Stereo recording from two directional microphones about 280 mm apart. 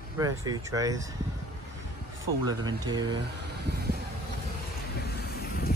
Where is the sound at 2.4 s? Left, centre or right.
Centre.